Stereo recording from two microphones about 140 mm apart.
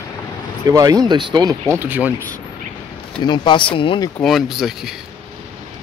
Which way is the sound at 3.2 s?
35° left (ahead or behind).